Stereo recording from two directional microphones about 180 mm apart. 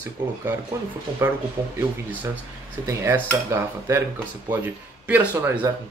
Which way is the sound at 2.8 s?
15° right (ahead or behind).